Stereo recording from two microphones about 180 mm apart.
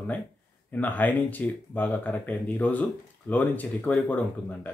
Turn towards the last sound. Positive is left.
turn(degrees=10)  # may be behind; listen again after turning